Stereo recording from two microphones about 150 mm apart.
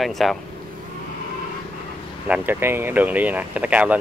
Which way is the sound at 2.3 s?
10° right (ahead or behind).